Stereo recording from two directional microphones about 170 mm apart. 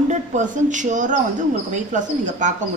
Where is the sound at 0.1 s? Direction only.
45° right (ahead or behind).